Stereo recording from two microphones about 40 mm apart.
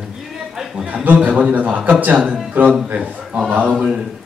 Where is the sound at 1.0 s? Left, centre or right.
Right.